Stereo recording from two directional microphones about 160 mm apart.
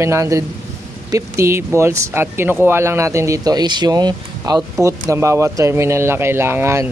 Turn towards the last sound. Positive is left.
turn(degrees=-15)  # may be behind; listen again after turning